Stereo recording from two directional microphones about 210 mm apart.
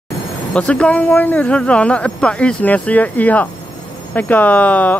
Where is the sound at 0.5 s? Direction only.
5° left (ahead or behind).